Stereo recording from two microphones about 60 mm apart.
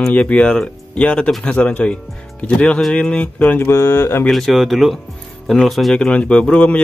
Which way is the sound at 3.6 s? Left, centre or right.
Left.